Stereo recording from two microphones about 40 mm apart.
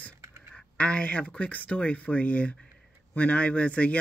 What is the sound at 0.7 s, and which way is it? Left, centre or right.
Speech, left.